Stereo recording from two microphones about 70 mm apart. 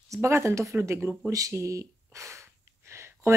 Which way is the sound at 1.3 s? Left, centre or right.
Right.